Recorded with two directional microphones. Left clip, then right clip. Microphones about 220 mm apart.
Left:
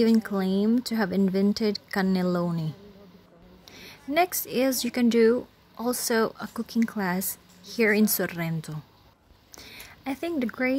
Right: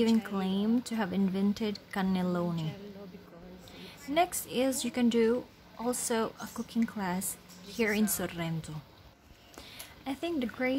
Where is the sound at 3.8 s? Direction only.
25° left (ahead or behind).